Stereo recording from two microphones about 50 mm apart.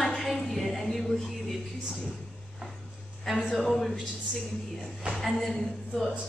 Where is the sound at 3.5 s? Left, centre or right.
Centre.